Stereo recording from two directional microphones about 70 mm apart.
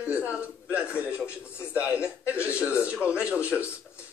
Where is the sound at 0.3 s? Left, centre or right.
Centre.